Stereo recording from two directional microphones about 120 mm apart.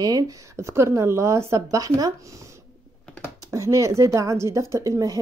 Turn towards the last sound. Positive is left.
turn(degrees=-25)  # may be behind; listen again after turning